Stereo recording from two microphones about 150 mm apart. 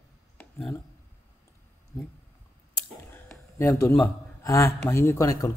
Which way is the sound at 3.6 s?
20° left (ahead or behind).